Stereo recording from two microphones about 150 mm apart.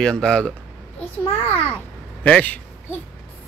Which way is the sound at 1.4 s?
15° left (ahead or behind).